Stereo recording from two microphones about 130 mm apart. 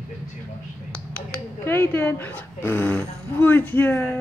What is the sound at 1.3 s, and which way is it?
Speech, 15° left (ahead or behind).